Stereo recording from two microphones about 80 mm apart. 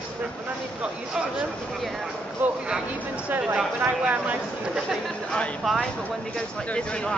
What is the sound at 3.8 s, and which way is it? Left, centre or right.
Speech, centre.